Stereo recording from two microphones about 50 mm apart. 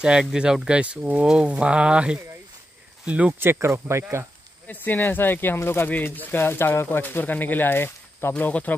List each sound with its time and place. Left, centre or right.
0.0 s speech: centre
3.3 s speech: right
4.6 s speech: left
5.9 s speech: left
7.0 s speech: left
8.3 s speech: left